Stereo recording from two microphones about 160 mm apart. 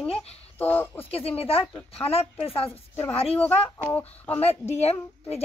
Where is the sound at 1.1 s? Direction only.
35° left (ahead or behind).